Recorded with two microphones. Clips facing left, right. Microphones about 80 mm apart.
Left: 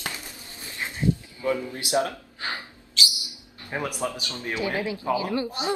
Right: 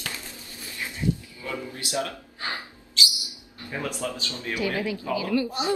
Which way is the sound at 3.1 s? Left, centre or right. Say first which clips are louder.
Even; right.